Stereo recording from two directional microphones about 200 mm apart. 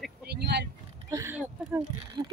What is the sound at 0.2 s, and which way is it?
Vehicle, 55° right (ahead or behind).